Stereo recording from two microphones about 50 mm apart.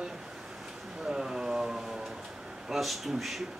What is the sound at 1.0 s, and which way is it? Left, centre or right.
Speech, centre.